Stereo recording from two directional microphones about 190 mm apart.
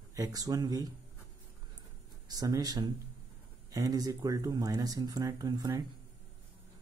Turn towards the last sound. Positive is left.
turn(degrees=-20)  # may be behind; listen again after turning